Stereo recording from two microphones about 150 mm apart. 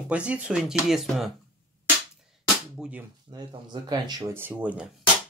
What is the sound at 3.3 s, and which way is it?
Speech, 30° right (ahead or behind).